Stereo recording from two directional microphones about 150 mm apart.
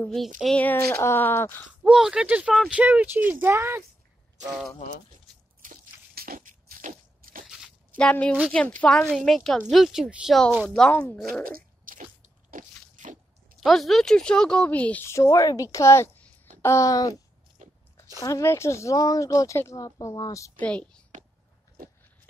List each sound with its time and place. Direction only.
0.4 s speech: 5° left (ahead or behind)
1.8 s speech: 5° right (ahead or behind)
5.3 s a sound: 75° right (ahead or behind)
7.4 s crunch: 5° right (ahead or behind)
8.0 s a woman's voice: 5° left (ahead or behind)
11.4 s crunch: 70° right (ahead or behind)
13.7 s speech: centre (ahead or behind); by 17.2 s 25° left (ahead or behind)
17.6 s biting: 55° right (ahead or behind)
18.2 s speech: 20° left (ahead or behind)
20.6 s speech: 10° left (ahead or behind)